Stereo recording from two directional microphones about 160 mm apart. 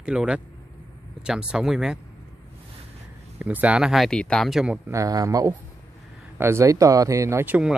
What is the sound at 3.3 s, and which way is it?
Speech, 10° right (ahead or behind).